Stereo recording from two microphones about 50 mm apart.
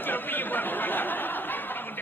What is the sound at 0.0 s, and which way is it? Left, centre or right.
Chatter, left.